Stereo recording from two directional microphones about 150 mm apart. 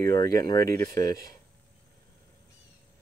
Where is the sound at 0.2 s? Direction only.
25° left (ahead or behind).